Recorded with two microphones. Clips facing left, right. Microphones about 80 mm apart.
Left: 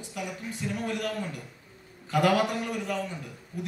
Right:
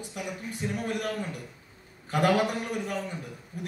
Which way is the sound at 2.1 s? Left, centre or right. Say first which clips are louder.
Even; right.